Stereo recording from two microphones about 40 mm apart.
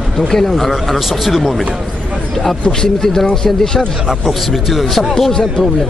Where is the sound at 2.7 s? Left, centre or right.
Centre.